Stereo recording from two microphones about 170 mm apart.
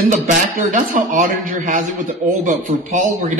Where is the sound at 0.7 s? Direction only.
50° right (ahead or behind).